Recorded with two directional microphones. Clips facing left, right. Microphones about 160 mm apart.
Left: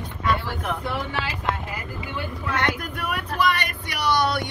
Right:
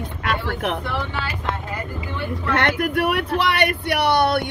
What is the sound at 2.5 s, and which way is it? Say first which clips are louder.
Speech: right 6 dB; 70° right (ahead or behind).